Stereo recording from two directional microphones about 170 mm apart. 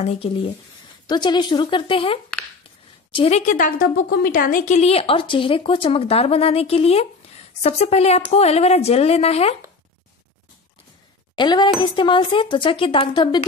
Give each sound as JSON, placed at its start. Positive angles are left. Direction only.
{"t": 0.0, "sound": "a woman's voice", "side_deg": 35}
{"t": 11.3, "sound": "speech", "side_deg": 25}